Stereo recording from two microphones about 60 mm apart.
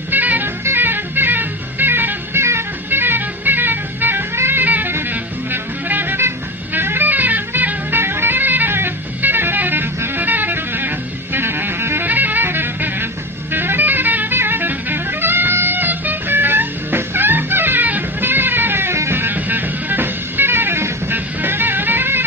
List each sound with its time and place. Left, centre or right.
0.1 s music: right